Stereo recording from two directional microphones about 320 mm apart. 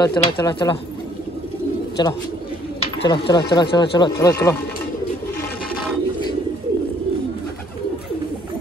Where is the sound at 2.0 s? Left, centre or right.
Centre.